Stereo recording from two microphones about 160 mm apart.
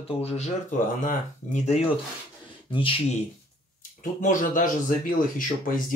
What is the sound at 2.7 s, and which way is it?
Speech, 35° left (ahead or behind).